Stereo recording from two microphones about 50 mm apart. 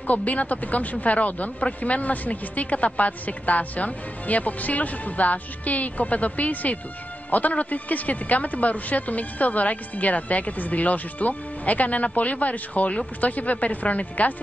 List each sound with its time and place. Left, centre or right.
0.0 s speech: left